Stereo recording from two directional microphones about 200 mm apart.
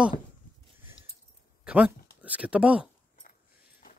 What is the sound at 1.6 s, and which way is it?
Speech, 5° right (ahead or behind).